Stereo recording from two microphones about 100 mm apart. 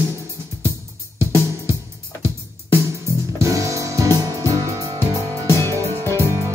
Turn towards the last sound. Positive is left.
turn(degrees=25)  # may be behind; listen again after turning